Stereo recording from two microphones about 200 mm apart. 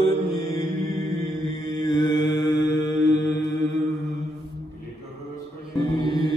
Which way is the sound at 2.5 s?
60° left (ahead or behind).